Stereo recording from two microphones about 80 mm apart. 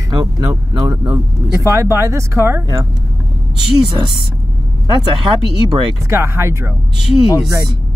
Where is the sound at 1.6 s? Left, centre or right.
Right.